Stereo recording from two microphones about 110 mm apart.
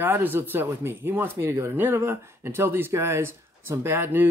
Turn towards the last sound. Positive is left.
turn(degrees=-20)  # may be behind; listen again after turning